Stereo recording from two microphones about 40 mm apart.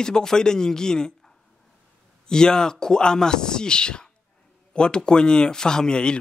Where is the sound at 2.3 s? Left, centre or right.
Centre.